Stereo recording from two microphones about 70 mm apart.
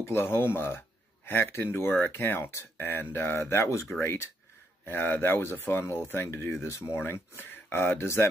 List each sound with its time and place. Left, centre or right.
0.0 s speech: left
1.9 s speech: left